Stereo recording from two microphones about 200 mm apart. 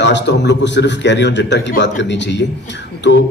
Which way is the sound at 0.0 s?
60° left (ahead or behind).